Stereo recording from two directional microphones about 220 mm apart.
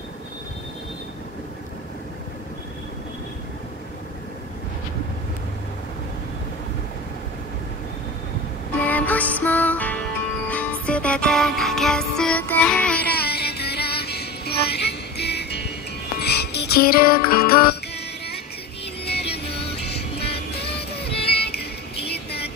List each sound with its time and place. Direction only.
8.7 s music: 5° left (ahead or behind)
13.1 s music: 45° left (ahead or behind)
19.0 s music: 50° left (ahead or behind)
22.1 s a sound: 45° left (ahead or behind)